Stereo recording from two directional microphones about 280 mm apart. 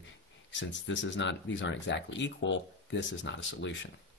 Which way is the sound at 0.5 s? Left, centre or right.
Left.